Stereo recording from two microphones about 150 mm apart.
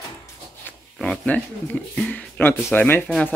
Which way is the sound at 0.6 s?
10° left (ahead or behind).